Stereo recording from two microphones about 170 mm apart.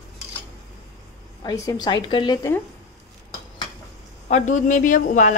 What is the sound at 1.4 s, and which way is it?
A woman's voice, 20° left (ahead or behind).